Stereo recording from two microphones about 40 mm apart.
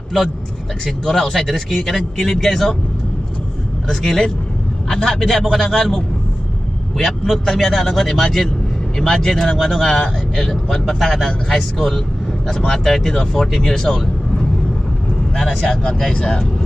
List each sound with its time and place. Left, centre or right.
0.8 s speech: centre
3.9 s a man's voice: centre
10.5 s speech: centre